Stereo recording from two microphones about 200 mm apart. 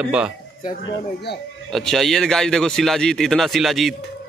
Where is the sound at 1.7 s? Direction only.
Centre (ahead or behind).